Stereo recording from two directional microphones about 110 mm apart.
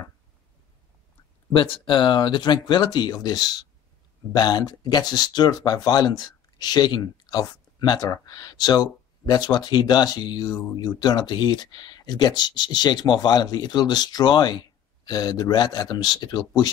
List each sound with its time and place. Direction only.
1.5 s speech: 55° left (ahead or behind); by 16.7 s 35° left (ahead or behind)